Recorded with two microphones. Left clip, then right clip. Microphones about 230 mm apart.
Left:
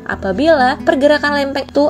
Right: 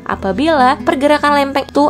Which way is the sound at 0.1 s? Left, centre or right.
Centre.